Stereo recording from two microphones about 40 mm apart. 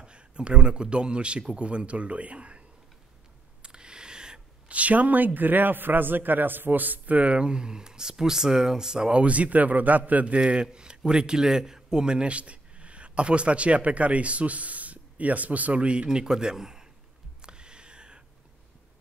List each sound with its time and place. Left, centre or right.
0.0 s a man's voice: right
3.6 s a sound: right
4.6 s a man's voice: right
7.4 s speech: right
9.2 s a man's voice: right; by 16.8 s centre
17.4 s a sound: right